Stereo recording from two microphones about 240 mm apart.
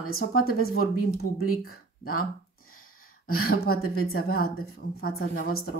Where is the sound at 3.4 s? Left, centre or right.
Left.